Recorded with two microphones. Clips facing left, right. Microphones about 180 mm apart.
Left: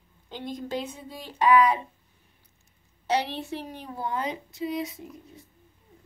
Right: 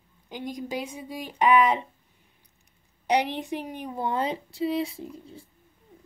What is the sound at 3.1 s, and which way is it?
A woman's voice, 15° right (ahead or behind).